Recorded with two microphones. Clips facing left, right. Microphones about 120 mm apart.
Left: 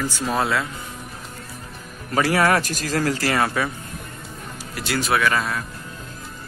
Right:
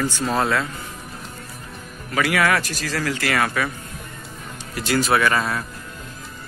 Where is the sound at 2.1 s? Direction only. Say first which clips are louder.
Left 1 dB; 35° left (ahead or behind).